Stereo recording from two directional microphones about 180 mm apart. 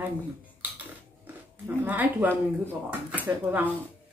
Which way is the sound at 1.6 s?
10° right (ahead or behind).